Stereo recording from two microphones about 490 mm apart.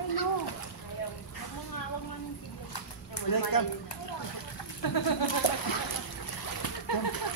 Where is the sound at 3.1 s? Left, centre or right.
Left.